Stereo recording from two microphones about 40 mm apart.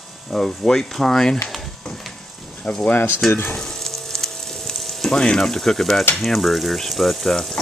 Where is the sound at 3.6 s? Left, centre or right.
Centre.